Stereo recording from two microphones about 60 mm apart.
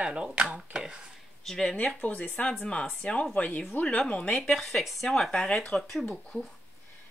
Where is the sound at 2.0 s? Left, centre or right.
Left; by 6.5 s centre.